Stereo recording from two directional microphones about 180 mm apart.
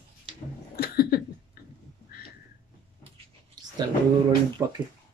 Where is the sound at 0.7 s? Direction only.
60° left (ahead or behind).